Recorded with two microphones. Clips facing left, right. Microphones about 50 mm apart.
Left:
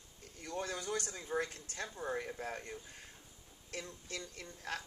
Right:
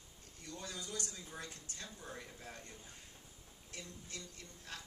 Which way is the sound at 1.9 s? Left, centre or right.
Left.